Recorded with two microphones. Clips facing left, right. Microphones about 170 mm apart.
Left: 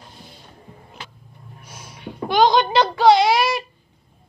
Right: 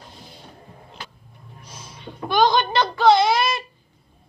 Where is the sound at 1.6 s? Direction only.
10° left (ahead or behind).